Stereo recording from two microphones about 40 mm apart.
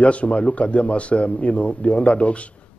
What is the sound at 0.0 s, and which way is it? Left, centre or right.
A man's voice, left.